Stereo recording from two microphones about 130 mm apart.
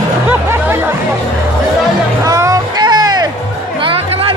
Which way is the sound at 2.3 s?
25° right (ahead or behind).